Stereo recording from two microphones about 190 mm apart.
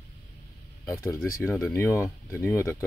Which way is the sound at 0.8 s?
15° left (ahead or behind).